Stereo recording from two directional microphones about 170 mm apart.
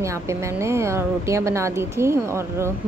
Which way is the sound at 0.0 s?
15° right (ahead or behind).